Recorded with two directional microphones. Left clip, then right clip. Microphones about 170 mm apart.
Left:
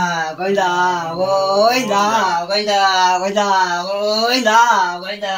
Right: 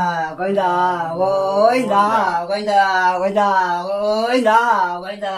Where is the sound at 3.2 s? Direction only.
30° right (ahead or behind).